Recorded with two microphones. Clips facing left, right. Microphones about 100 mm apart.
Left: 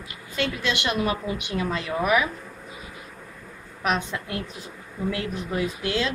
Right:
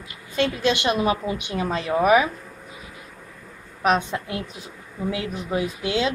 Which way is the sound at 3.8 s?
25° right (ahead or behind).